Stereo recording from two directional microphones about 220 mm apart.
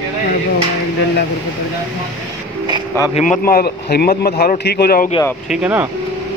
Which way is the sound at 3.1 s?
35° left (ahead or behind).